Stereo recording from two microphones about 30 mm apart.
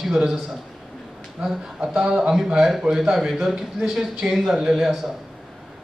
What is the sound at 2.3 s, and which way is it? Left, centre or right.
Speech, centre.